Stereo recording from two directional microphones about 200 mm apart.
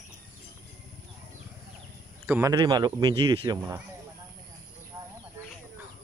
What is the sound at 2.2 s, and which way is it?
Speech, 15° right (ahead or behind).